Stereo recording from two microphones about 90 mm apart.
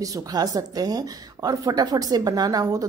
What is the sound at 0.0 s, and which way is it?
A woman's voice, 45° right (ahead or behind).